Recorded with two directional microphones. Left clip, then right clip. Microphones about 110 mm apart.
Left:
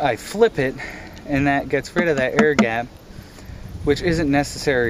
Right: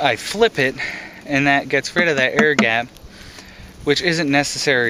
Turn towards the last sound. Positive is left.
turn(degrees=-20)  # may be behind; listen again after turning